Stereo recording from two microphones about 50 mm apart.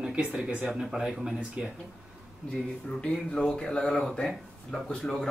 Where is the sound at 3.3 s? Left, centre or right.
Centre.